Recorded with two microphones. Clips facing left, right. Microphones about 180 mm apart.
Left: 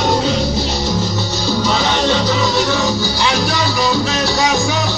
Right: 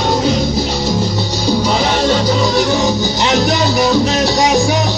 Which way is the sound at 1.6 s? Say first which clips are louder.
Even; 10° right (ahead or behind).